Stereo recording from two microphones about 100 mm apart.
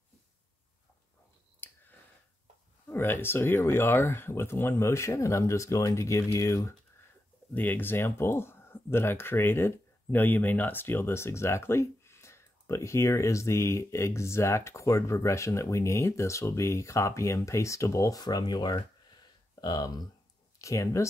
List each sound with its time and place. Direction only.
1.6 s a sound: 20° left (ahead or behind)
2.9 s speech: 25° left (ahead or behind)
7.5 s speech: 20° left (ahead or behind)